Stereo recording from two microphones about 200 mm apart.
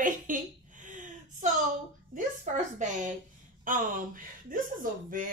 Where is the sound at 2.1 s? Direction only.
40° right (ahead or behind).